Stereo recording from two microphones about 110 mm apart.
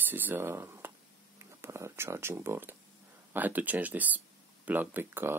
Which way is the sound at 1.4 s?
25° right (ahead or behind).